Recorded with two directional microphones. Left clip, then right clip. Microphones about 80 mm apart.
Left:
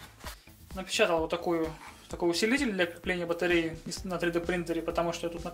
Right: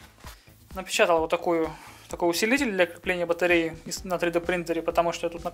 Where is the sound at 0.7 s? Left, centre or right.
Right.